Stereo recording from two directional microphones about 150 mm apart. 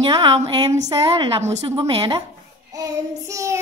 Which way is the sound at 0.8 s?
25° right (ahead or behind).